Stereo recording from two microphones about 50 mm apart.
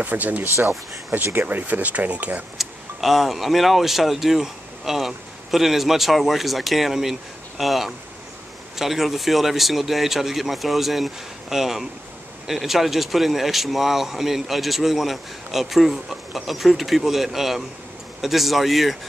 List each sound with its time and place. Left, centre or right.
0.0 s speech: right
2.5 s speech: centre